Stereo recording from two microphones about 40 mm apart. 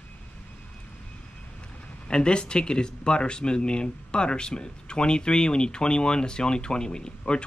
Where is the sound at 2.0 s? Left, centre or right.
Left.